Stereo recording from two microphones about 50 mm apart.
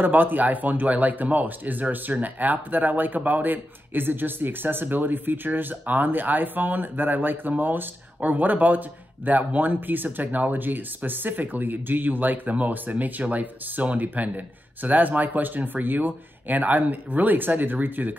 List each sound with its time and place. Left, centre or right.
0.0 s speech: right